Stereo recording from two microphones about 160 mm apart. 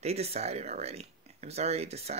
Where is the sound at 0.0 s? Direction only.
40° right (ahead or behind).